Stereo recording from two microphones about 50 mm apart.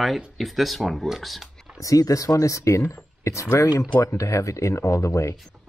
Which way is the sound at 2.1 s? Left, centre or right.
Left.